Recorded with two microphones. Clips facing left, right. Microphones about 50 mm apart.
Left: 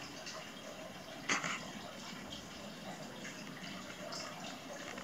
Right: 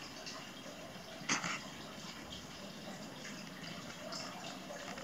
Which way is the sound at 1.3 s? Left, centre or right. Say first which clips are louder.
Left 1 dB; centre.